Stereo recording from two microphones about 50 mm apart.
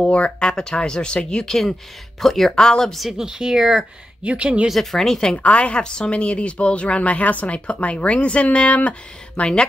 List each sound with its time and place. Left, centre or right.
0.0 s speech: centre
3.1 s a woman's voice: centre
4.2 s speech: right
4.9 s speech: centre
5.3 s speech: left